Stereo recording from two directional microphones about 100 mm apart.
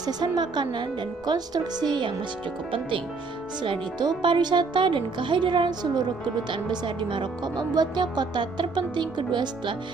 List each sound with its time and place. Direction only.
0.0 s a woman's voice: 45° right (ahead or behind)
3.6 s a woman's voice: 55° right (ahead or behind)